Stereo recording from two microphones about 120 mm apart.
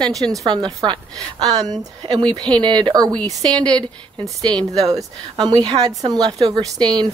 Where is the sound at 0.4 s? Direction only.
35° right (ahead or behind).